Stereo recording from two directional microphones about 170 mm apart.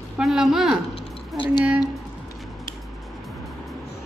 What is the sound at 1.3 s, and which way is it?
Speech, 30° left (ahead or behind).